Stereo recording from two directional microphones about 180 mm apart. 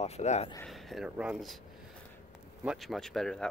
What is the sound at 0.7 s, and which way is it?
Speech, centre (ahead or behind).